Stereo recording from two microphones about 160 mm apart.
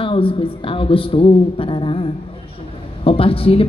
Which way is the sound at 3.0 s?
35° left (ahead or behind).